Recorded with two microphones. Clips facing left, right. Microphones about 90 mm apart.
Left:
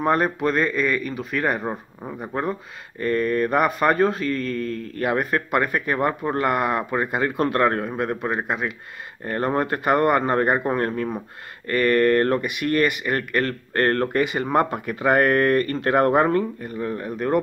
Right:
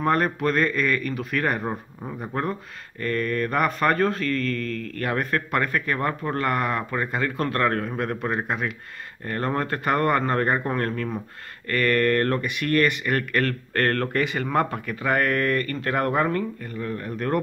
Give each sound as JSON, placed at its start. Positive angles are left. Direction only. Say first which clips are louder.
{"t": 0.0, "sound": "speech", "louder": "left 2 dB", "side_deg": 5}
{"t": 3.0, "sound": "speech", "louder": "left 4 dB", "side_deg": 15}
{"t": 4.7, "sound": "speech", "louder": "left 1 dB", "side_deg": -80}
{"t": 5.0, "sound": "speech", "louder": "left 4 dB", "side_deg": 10}
{"t": 9.2, "sound": "speech", "louder": "left 3 dB", "side_deg": 15}